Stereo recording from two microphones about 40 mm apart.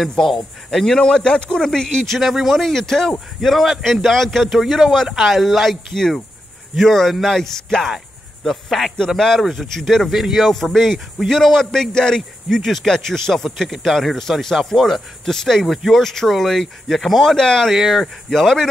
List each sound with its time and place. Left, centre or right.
0.3 s speech: centre
1.0 s speech: left
2.1 s speech: centre
2.6 s speech: centre
5.9 s speech: centre
8.5 s speech: centre
15.6 s speech: centre
17.4 s speech: centre
17.6 s speech: centre
18.0 s speech: centre